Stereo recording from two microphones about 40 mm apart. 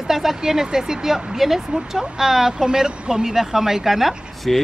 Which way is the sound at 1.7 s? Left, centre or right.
Right.